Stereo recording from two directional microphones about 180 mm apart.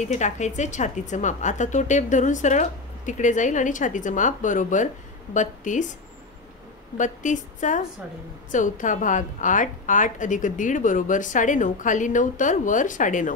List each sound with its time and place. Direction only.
0.0 s a woman's voice: 40° left (ahead or behind)
7.0 s a woman's voice: 45° left (ahead or behind)